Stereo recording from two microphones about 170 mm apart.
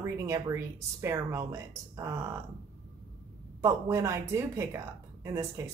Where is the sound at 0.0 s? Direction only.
20° right (ahead or behind).